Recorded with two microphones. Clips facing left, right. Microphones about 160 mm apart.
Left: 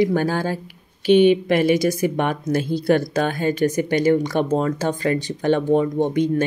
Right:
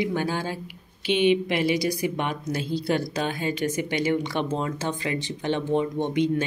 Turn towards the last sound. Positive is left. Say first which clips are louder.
# left 5 dB
turn(degrees=45)  # may be behind; listen again after turning